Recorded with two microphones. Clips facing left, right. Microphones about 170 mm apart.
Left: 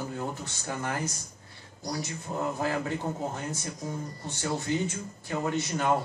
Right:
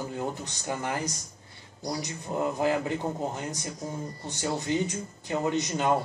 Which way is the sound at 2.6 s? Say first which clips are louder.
Right 3 dB; 15° right (ahead or behind).